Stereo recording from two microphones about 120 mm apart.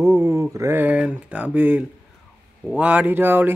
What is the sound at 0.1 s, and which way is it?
Speech, 25° right (ahead or behind).